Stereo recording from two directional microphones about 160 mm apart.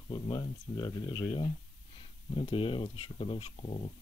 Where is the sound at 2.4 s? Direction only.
35° left (ahead or behind).